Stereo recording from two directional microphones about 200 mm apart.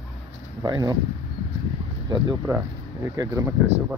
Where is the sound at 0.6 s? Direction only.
20° right (ahead or behind).